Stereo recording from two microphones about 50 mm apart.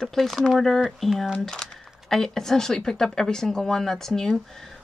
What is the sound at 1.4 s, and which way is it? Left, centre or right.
Speech, centre.